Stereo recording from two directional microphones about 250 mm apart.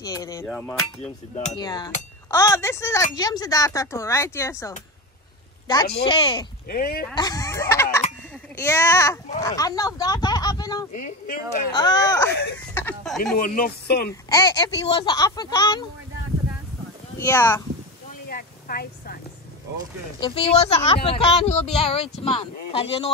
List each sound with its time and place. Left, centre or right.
0.0 s speech: centre
1.5 s speech: centre
6.7 s speech: left
7.2 s a sound: centre
8.5 s speech: centre
10.9 s speech: left
11.7 s speech: centre
13.4 s speech: left
14.3 s speech: centre
17.2 s speech: centre
18.3 s a sound: left
20.2 s speech: left